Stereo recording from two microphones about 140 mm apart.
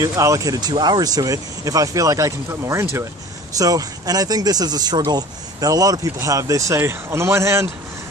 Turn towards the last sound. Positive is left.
turn(degrees=-20)  # may be behind; listen again after turning